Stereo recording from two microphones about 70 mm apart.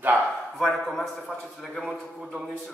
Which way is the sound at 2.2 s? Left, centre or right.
Centre.